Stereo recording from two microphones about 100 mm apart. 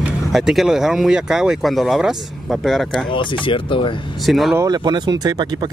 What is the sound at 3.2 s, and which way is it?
Speech, 55° left (ahead or behind).